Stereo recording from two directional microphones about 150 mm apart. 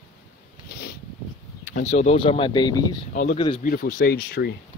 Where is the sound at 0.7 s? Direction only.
90° left.